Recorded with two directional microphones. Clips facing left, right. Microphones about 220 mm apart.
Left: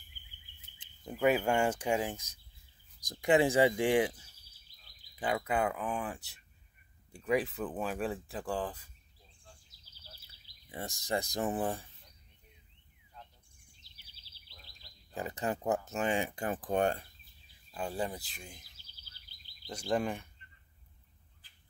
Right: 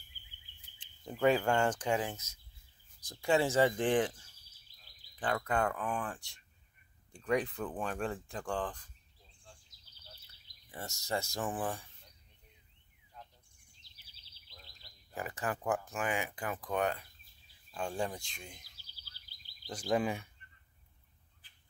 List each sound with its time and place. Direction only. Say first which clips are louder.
1.0 s speech: even; 5° left (ahead or behind)
11.0 s speech: left 2 dB; 15° left (ahead or behind)
15.1 s speech: left 3 dB; 20° left (ahead or behind)
17.6 s speech: even; 5° left (ahead or behind)
19.7 s speech: even; centre (ahead or behind)